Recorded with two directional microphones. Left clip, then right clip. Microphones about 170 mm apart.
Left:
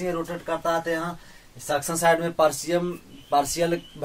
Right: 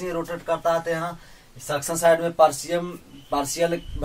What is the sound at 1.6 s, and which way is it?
Speech, 35° left (ahead or behind).